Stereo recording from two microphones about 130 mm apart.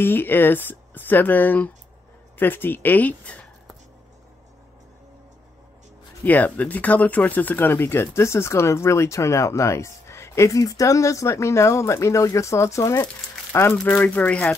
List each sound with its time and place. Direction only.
0.0 s speech: 15° left (ahead or behind)
6.2 s speech: 10° left (ahead or behind)